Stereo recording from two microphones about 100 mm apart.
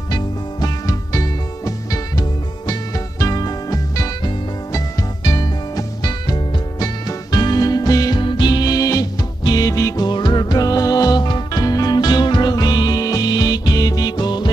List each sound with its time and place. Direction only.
0.1 s music: 40° left (ahead or behind)
8.2 s music: 50° left (ahead or behind)
9.7 s music: 30° left (ahead or behind)
9.9 s music: 50° left (ahead or behind)